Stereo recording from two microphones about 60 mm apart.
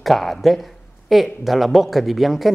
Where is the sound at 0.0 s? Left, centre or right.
Centre.